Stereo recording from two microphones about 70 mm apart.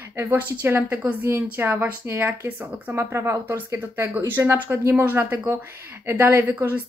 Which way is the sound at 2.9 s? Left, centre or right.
Right.